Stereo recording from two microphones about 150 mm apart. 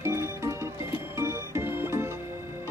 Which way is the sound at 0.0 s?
15° right (ahead or behind).